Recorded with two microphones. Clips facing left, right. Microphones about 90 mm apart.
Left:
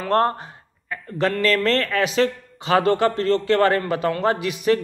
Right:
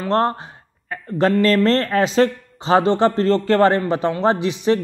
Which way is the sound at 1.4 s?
35° right (ahead or behind).